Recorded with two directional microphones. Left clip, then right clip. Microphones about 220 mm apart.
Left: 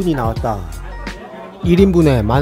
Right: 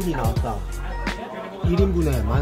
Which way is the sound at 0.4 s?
40° left (ahead or behind).